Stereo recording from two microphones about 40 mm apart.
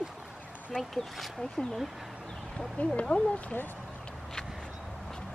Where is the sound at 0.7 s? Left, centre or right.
Centre.